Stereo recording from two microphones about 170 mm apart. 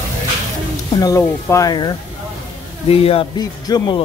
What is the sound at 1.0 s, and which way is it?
Speech, 20° left (ahead or behind).